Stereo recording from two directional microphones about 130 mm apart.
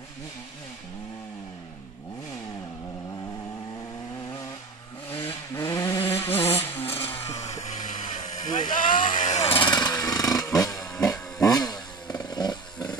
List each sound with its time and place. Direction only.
5.5 s vehicle: 25° left (ahead or behind)
7.3 s vehicle: 60° left (ahead or behind)
8.5 s a sound: 90° left
9.1 s vehicle: 65° left (ahead or behind)
9.6 s a sound: 35° left (ahead or behind)
11.3 s motorcycle: 30° left (ahead or behind)